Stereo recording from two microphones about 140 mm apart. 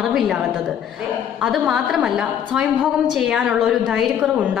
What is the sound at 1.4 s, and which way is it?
A woman's voice, centre (ahead or behind).